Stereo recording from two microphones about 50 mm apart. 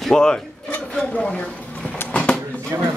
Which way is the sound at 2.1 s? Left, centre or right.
Left.